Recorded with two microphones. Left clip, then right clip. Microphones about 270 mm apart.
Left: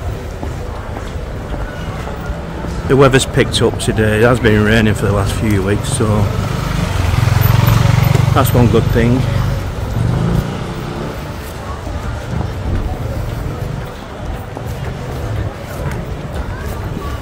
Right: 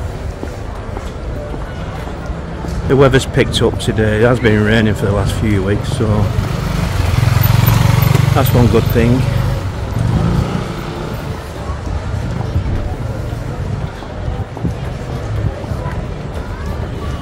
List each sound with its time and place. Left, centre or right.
2.9 s speech: centre
7.4 s wild animals: right
8.4 s speech: centre